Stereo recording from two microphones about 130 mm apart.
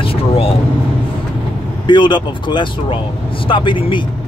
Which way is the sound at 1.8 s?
40° left (ahead or behind).